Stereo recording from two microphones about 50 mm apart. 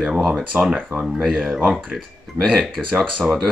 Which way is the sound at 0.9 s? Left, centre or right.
Right.